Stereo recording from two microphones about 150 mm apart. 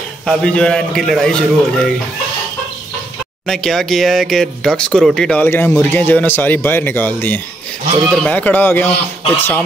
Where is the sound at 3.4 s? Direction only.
Centre (ahead or behind).